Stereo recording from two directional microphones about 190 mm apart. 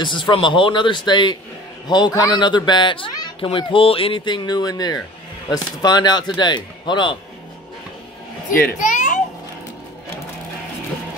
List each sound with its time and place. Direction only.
0.0 s a child's voice: 25° left (ahead or behind)
8.7 s children playing: 40° left (ahead or behind)